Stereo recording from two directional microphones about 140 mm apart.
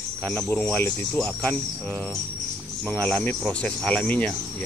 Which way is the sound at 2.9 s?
10° left (ahead or behind).